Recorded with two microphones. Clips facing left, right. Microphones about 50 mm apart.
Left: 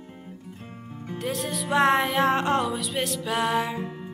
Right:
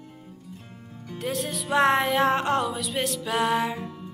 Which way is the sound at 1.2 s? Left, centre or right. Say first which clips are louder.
Even; centre.